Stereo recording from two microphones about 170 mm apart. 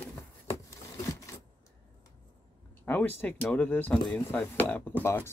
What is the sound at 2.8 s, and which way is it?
Speech, 10° left (ahead or behind).